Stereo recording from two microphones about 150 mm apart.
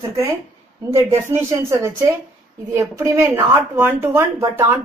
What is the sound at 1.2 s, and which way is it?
A woman's voice, 15° right (ahead or behind).